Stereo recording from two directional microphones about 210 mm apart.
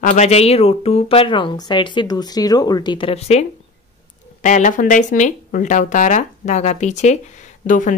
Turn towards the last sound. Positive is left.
turn(degrees=40)  # may be behind; listen again after turning